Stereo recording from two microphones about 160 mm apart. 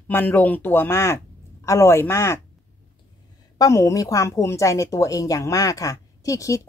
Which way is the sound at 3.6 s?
20° left (ahead or behind).